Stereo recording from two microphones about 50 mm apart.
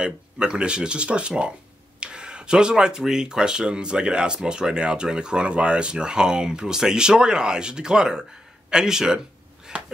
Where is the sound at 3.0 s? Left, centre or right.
Centre.